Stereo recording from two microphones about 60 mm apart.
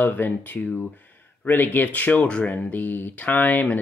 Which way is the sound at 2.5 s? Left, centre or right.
Left.